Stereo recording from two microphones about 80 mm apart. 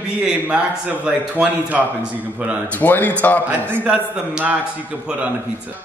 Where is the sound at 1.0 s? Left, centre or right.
Centre.